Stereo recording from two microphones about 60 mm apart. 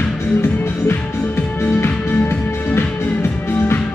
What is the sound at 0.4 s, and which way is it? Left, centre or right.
Music, left.